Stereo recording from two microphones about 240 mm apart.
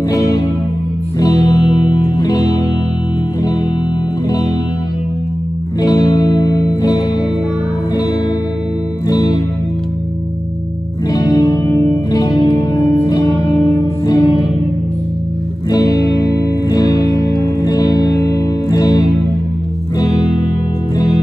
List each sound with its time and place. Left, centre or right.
0.1 s music: centre
5.8 s music: centre
9.1 s music: centre
11.1 s music: centre
15.7 s music: centre